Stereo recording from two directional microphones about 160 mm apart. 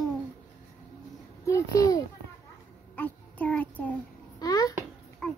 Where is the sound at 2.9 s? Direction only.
10° left (ahead or behind).